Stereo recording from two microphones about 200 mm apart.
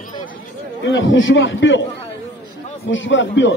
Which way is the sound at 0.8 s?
70° left (ahead or behind).